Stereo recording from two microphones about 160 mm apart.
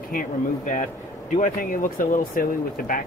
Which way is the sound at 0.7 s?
50° left (ahead or behind).